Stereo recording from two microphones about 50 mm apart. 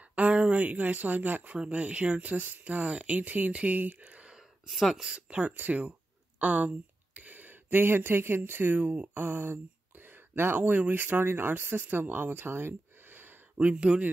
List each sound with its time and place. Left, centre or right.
0.0 s speech: right
4.6 s speech: centre
5.1 s speech: right
6.4 s a sound: right
8.5 s speech: right
13.6 s speech: right